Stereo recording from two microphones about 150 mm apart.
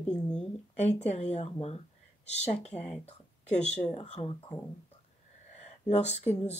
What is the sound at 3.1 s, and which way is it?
Speech, 50° left (ahead or behind).